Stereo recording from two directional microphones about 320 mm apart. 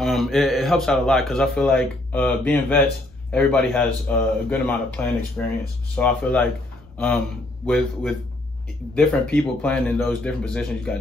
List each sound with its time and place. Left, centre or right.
0.0 s speech: centre